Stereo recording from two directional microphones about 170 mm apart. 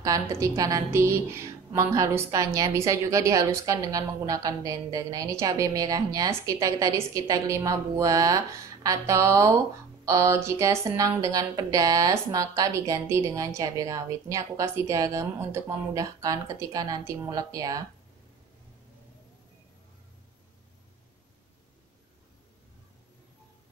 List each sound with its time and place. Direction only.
0.0 s a woman's voice: 20° right (ahead or behind)